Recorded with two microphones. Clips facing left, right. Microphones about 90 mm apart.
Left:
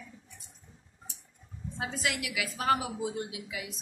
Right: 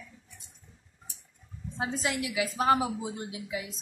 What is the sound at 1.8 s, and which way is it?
A woman's voice, 30° right (ahead or behind).